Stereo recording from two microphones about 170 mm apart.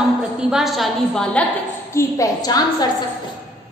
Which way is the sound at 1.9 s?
15° left (ahead or behind).